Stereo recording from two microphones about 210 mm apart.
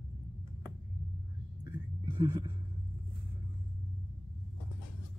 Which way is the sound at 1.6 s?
20° right (ahead or behind).